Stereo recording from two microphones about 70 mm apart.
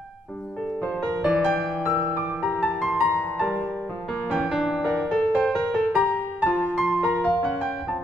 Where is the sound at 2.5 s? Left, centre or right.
Left.